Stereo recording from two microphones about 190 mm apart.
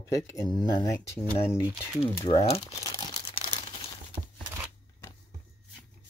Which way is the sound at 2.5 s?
30° left (ahead or behind).